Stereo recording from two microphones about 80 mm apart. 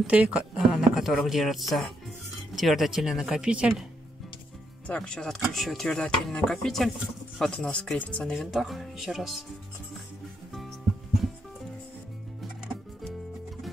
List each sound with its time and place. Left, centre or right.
0.0 s speech: centre
0.6 s speech: centre
4.8 s speech: centre